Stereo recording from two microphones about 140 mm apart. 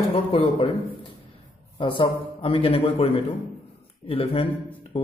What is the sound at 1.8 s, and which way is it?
A man's voice, 35° left (ahead or behind).